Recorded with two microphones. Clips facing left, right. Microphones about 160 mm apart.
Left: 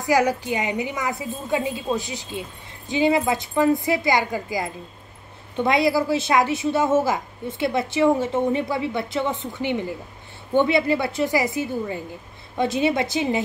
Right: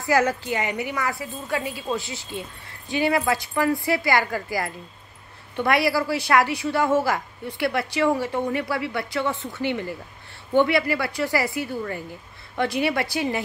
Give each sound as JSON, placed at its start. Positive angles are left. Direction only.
{"t": 0.0, "sound": "a woman's voice", "side_deg": 15}